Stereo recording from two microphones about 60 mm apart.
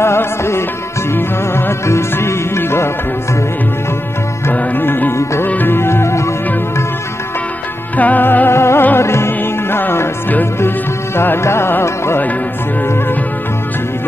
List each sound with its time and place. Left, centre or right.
0.0 s music: left
4.5 s music: left
5.1 s music: left
5.5 s music: left
8.0 s music: left